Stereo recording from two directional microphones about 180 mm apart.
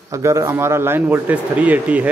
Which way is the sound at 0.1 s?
15° right (ahead or behind).